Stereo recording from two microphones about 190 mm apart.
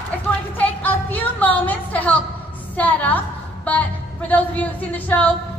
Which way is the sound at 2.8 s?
10° left (ahead or behind).